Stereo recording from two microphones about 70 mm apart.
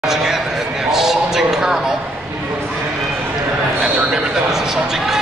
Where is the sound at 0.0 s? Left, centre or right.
Centre.